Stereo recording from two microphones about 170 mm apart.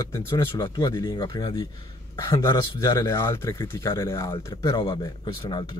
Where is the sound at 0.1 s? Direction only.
25° left (ahead or behind).